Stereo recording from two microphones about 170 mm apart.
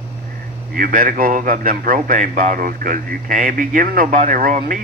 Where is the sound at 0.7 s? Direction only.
55° right (ahead or behind).